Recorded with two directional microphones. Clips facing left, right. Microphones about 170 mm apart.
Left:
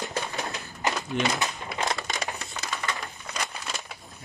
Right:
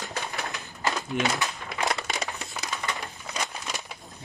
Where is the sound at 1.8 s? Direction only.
5° right (ahead or behind).